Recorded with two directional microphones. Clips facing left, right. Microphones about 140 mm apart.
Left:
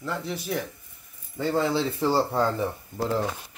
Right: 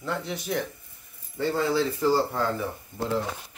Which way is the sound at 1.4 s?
20° left (ahead or behind).